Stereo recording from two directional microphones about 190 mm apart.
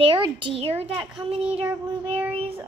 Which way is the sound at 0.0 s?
25° right (ahead or behind).